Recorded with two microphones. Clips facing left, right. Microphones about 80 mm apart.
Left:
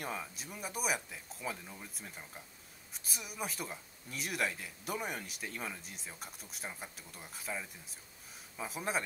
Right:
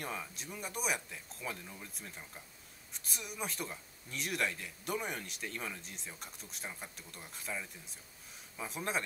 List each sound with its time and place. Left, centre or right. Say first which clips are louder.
0.0 s speech: left 1 dB; centre